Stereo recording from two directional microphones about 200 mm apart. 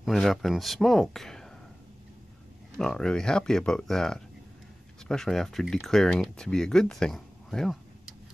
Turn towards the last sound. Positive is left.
turn(degrees=0)  # may be behind; listen again after turning